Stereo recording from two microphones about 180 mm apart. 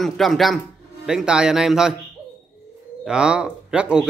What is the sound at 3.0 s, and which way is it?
A man's voice, 5° right (ahead or behind).